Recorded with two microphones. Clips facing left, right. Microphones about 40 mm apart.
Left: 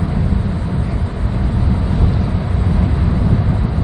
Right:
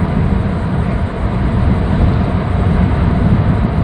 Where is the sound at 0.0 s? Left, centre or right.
Right.